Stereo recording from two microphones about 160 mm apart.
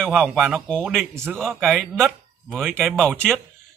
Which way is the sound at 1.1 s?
15° right (ahead or behind).